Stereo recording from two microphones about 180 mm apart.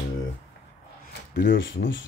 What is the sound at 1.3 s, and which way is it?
Speech, 75° left (ahead or behind).